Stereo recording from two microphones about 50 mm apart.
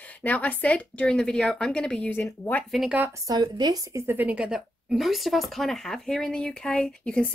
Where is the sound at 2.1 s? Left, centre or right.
Left.